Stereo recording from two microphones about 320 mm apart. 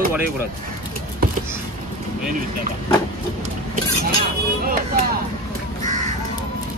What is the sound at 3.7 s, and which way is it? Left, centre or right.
Vehicle, right.